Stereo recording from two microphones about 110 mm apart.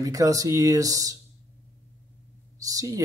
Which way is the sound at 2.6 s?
30° right (ahead or behind).